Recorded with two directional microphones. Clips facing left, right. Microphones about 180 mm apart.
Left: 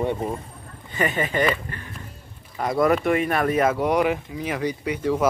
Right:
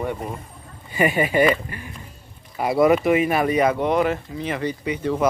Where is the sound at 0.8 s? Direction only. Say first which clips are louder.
Right 4 dB; 10° right (ahead or behind).